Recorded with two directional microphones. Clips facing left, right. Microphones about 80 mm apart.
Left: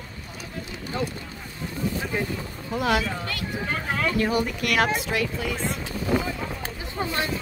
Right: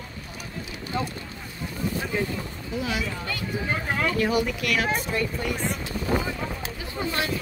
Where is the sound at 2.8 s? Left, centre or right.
Left.